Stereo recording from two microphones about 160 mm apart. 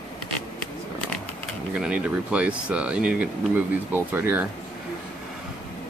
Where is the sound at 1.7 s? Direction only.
5° right (ahead or behind).